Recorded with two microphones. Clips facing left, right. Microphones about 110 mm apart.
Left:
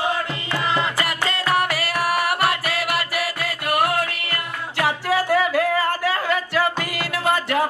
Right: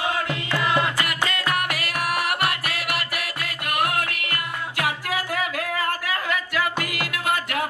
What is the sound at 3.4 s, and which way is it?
Music, 35° left (ahead or behind).